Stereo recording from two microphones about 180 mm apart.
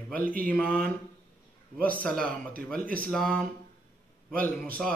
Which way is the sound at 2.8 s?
50° right (ahead or behind).